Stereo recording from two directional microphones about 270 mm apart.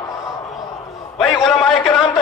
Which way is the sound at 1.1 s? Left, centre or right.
Centre.